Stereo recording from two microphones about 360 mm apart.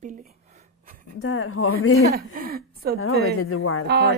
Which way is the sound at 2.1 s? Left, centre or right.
Right.